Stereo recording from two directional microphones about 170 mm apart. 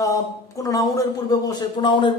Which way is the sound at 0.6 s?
20° left (ahead or behind).